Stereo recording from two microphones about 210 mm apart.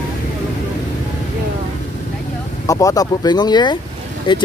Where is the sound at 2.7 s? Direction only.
15° left (ahead or behind).